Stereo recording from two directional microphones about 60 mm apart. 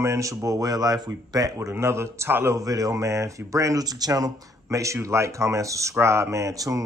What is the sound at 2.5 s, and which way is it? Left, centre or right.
Speech, right.